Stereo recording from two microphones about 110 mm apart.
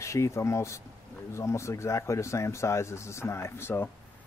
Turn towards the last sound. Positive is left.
turn(degrees=20)  # may be behind; listen again after turning